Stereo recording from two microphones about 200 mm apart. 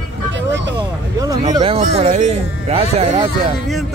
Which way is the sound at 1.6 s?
30° right (ahead or behind).